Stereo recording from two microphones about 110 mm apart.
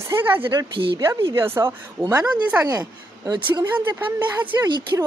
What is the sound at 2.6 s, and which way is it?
Speech, 35° right (ahead or behind).